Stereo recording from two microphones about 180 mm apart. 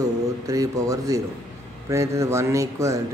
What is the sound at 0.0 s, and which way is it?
Speech, 20° right (ahead or behind).